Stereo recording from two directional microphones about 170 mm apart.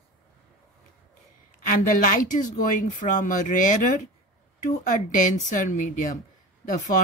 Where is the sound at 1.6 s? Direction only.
50° left (ahead or behind).